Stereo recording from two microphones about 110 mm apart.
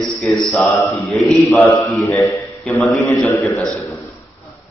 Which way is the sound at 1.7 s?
25° left (ahead or behind).